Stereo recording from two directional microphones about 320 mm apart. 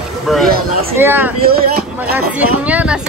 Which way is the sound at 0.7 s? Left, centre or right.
Right.